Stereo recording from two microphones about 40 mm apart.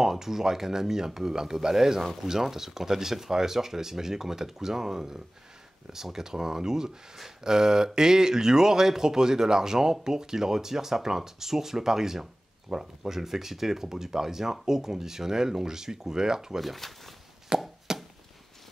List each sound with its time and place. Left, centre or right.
0.0 s speech: centre
16.6 s speech: centre
17.5 s chopping: right
17.9 s a sound: centre